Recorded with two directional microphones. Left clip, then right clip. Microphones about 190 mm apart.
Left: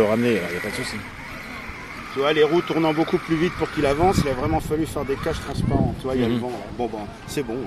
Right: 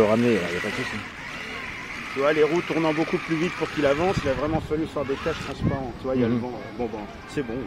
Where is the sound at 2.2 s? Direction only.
50° left (ahead or behind).